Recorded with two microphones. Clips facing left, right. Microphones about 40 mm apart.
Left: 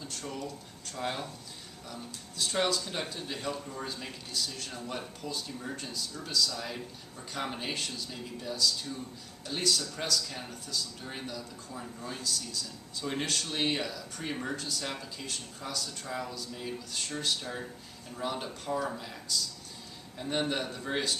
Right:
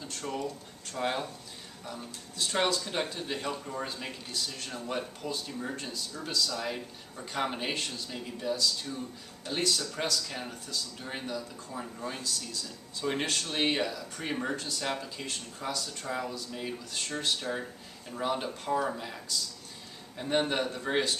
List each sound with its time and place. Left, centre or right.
0.0 s speech: centre
20.2 s speech: centre